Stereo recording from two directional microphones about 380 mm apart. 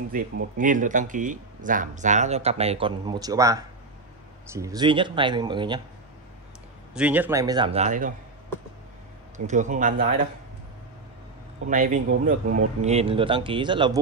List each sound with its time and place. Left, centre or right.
0.1 s speech: right
6.9 s speech: centre
9.5 s speech: centre
11.6 s speech: right